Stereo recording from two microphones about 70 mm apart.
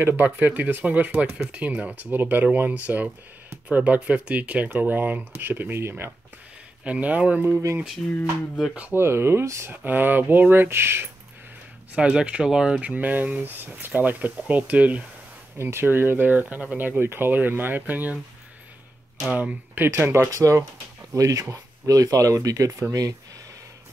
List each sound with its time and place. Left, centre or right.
0.0 s speech: right
6.8 s speech: right
8.0 s a sound: centre
8.9 s speech: right
9.7 s speech: right
11.9 s speech: centre
15.5 s speech: right
19.3 s speech: right
19.9 s speech: right
20.2 s speech: right